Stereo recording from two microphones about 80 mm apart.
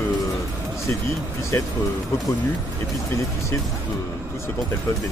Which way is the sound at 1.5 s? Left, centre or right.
Left.